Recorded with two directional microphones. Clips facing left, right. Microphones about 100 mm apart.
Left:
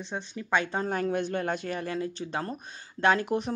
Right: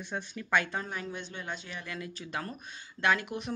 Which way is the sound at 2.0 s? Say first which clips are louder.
Left 6 dB; 30° left (ahead or behind).